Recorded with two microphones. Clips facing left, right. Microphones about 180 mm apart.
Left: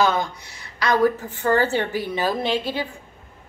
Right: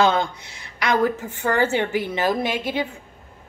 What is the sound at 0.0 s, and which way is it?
A woman's voice, 25° right (ahead or behind).